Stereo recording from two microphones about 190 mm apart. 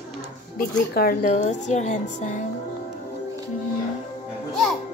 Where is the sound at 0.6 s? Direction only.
50° left (ahead or behind).